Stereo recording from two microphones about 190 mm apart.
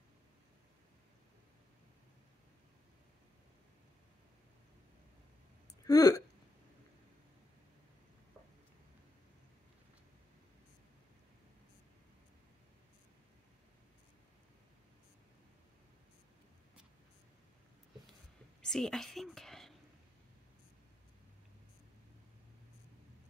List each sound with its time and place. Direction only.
5.9 s speech: 20° left (ahead or behind)
18.6 s a woman's voice: 5° left (ahead or behind)